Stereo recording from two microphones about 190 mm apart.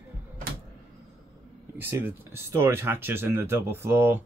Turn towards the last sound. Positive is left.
turn(degrees=-10)  # may be behind; listen again after turning